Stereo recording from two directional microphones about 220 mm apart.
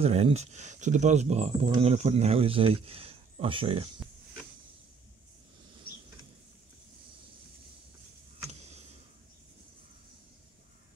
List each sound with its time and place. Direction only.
0.0 s speech: 30° right (ahead or behind)